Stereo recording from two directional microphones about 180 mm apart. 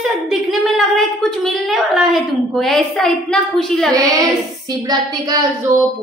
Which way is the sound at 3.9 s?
20° right (ahead or behind).